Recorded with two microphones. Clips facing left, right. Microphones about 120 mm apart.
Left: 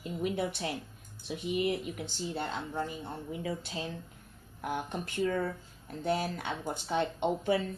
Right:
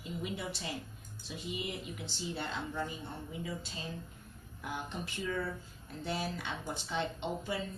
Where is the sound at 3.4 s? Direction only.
65° left (ahead or behind).